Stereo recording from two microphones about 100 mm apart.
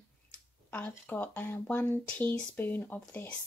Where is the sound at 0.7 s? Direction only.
15° left (ahead or behind).